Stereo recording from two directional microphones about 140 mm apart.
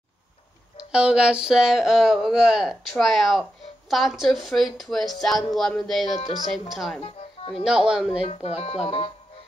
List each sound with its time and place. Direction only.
0.9 s speech: 5° right (ahead or behind)
7.0 s music: 40° left (ahead or behind)
7.6 s speech: 5° right (ahead or behind)
8.2 s speech: 45° left (ahead or behind)